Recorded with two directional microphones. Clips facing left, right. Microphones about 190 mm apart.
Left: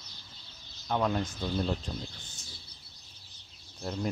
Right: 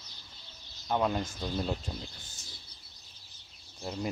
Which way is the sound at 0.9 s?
10° right (ahead or behind).